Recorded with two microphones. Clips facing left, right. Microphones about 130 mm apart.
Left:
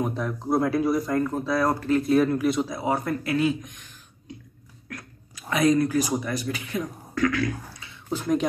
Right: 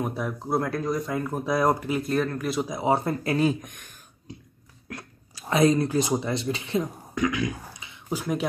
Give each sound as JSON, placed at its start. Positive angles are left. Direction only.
{"t": 0.0, "sound": "speech", "side_deg": -5}
{"t": 1.1, "sound": "speech", "side_deg": -10}
{"t": 2.0, "sound": "speech", "side_deg": 5}
{"t": 2.7, "sound": "speech", "side_deg": -25}
{"t": 4.8, "sound": "speech", "side_deg": -30}
{"t": 8.2, "sound": "speech", "side_deg": -5}